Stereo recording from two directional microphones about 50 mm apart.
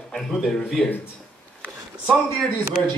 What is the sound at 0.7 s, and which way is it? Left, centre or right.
Speech, left.